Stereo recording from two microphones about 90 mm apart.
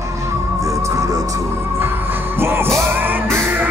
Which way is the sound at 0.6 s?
35° right (ahead or behind).